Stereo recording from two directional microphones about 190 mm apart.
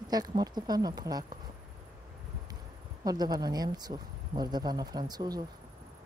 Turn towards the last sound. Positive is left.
turn(degrees=-20)  # may be behind; listen again after turning